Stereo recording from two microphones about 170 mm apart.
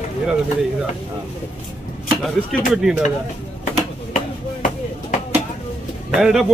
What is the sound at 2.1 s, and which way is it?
Speech, centre (ahead or behind).